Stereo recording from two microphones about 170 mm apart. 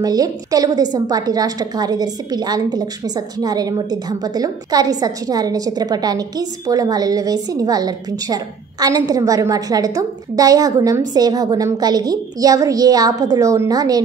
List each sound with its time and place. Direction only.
0.0 s a woman's voice: 20° right (ahead or behind)